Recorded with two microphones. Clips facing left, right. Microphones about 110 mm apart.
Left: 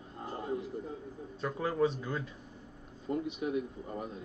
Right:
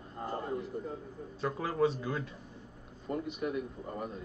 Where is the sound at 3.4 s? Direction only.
55° right (ahead or behind).